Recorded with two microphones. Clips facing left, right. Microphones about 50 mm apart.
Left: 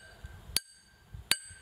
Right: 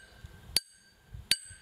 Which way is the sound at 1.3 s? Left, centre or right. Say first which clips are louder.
Left 1 dB; centre.